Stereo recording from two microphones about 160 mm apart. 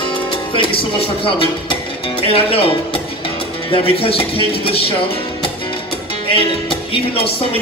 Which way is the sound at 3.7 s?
35° left (ahead or behind).